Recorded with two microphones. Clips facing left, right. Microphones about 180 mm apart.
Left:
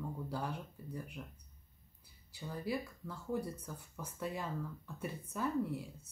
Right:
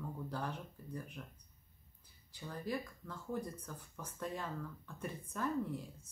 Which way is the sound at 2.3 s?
10° left (ahead or behind).